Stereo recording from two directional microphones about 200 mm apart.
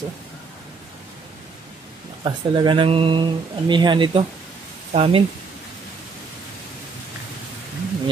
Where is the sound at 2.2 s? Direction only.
25° right (ahead or behind).